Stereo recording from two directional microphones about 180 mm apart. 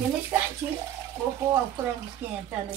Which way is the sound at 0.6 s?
10° right (ahead or behind).